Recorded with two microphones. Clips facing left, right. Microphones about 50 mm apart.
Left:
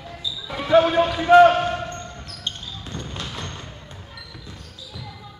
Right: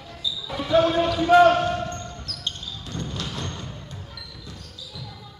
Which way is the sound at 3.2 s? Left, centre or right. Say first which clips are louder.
Right 1 dB; centre.